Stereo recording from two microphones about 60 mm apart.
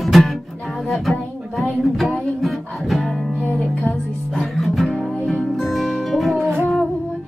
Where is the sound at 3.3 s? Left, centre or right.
Left.